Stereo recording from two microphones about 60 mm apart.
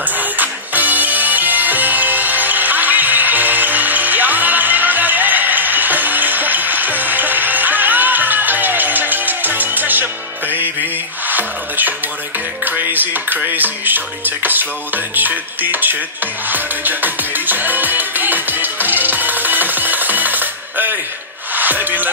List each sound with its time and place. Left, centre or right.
0.4 s music: right
11.2 s music: right
12.7 s dishes: right
16.4 s music: right